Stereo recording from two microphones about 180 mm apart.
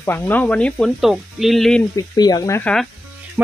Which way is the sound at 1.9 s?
20° left (ahead or behind).